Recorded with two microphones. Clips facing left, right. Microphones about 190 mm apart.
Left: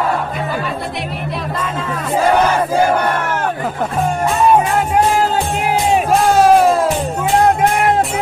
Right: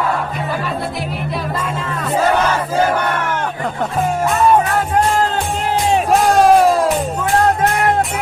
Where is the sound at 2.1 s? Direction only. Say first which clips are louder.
Left 2 dB; 10° left (ahead or behind).